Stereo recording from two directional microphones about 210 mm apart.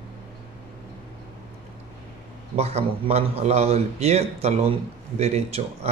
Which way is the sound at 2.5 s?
30° right (ahead or behind).